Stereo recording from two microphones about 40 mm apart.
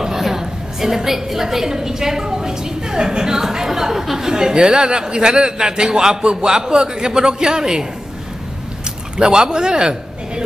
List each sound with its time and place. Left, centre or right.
0.0 s a woman's voice: centre
9.1 s a man's voice: right